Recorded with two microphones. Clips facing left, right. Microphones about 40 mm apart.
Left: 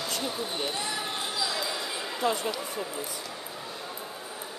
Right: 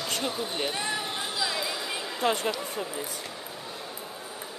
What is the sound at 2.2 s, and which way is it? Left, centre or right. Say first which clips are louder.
Speech: right 2 dB; right.